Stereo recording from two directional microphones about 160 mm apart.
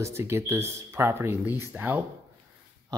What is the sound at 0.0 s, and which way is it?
Speech, 15° right (ahead or behind).